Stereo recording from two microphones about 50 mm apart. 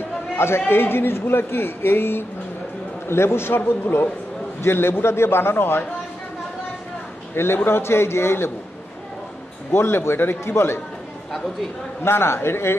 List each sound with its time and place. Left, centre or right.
0.4 s a man's voice: left
7.3 s a man's voice: left
9.7 s a man's voice: left
12.0 s a man's voice: left